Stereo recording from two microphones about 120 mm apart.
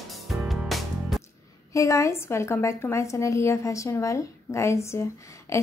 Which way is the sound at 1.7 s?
25° left (ahead or behind).